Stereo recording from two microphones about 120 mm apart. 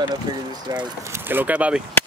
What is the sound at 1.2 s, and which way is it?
Speech, 15° right (ahead or behind).